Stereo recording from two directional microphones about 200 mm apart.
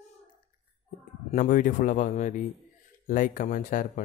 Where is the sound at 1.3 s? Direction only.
40° left (ahead or behind).